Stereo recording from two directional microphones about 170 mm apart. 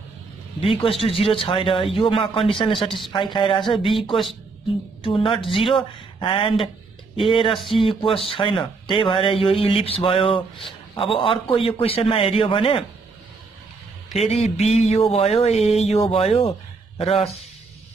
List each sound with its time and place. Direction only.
0.6 s speech: 30° left (ahead or behind)
5.0 s speech: 30° left (ahead or behind)
14.1 s speech: 35° left (ahead or behind)